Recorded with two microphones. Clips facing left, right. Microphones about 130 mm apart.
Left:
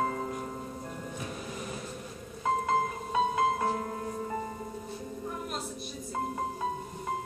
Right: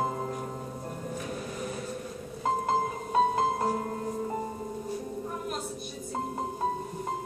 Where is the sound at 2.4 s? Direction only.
35° right (ahead or behind).